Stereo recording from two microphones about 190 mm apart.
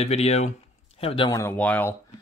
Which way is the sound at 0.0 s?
35° left (ahead or behind).